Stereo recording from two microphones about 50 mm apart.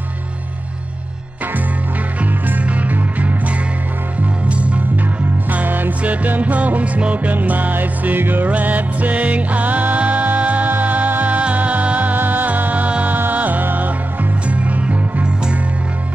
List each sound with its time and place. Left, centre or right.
2.4 s music: right